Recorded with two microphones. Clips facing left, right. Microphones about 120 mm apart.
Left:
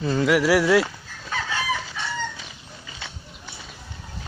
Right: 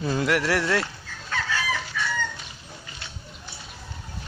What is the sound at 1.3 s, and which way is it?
Chicken, 20° left (ahead or behind).